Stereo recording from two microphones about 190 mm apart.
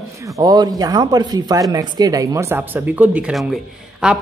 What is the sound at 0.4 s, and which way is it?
A man's voice, 20° right (ahead or behind).